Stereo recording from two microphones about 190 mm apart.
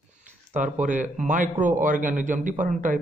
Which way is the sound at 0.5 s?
40° right (ahead or behind).